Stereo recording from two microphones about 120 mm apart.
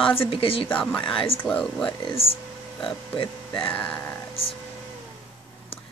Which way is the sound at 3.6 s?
15° left (ahead or behind).